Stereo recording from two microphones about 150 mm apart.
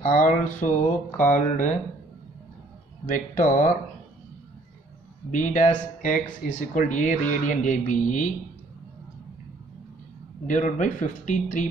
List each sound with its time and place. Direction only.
0.0 s speech: 55° left (ahead or behind)
3.1 s speech: 60° left (ahead or behind)
5.3 s speech: 60° left (ahead or behind)
10.4 s speech: 55° left (ahead or behind)